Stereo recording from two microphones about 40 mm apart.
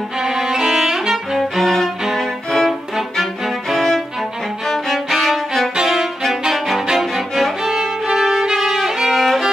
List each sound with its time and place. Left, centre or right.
0.2 s violin: centre
1.4 s music: centre
3.7 s music: centre
8.5 s violin: centre
9.1 s music: centre